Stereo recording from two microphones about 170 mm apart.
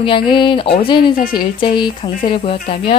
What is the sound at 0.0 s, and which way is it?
Speech, 30° left (ahead or behind).